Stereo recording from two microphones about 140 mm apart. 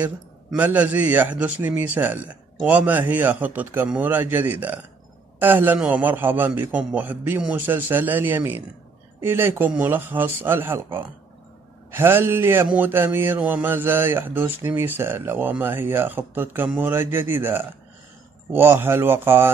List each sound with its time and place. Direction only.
0.6 s speech: 10° right (ahead or behind)